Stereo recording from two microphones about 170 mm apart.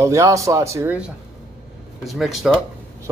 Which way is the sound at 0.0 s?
20° right (ahead or behind).